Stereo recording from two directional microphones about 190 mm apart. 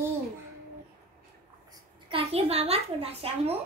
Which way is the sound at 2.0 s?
30° right (ahead or behind).